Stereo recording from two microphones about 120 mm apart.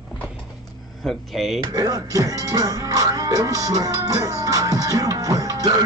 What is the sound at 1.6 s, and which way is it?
Speech, 30° right (ahead or behind).